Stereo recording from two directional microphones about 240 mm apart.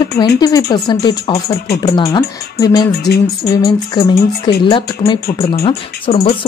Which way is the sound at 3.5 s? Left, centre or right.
Centre.